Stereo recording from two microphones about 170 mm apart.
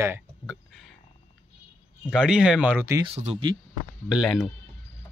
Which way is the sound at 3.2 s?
40° right (ahead or behind).